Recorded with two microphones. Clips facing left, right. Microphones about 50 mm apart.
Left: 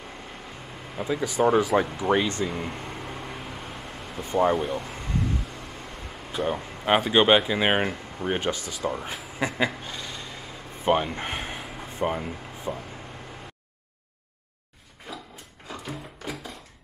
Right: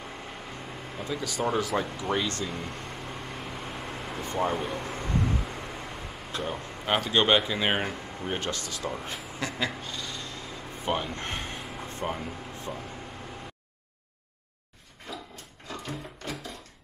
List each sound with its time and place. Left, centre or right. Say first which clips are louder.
0.9 s speech: left 7 dB; centre
2.7 s vehicle: left 2 dB; centre
4.2 s speech: left 6 dB; centre
4.6 s vehicle: left 3 dB; centre
6.3 s speech: left 6 dB; centre
9.4 s a sound: left 6 dB; centre
10.9 s air conditioning: left 7 dB; left; by 12.1 s centre
12.1 s speech: left 3 dB; centre
15.1 s a sound: left 1 dB; centre
15.7 s music: left 1 dB; centre